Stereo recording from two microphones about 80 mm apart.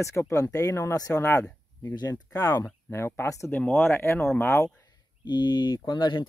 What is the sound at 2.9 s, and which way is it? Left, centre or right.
Speech, left.